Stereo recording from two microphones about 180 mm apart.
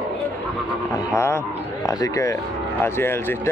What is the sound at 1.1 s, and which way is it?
Speech, 15° left (ahead or behind).